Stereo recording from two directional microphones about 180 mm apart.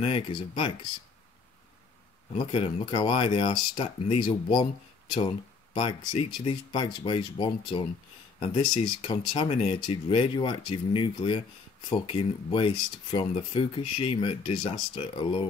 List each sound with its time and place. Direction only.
0.0 s speech: 30° left (ahead or behind)
2.3 s speech: 30° left (ahead or behind)
5.8 s speech: 30° left (ahead or behind)